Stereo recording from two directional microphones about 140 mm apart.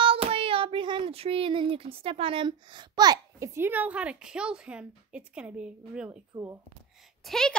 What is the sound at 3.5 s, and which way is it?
A woman's voice, 15° right (ahead or behind).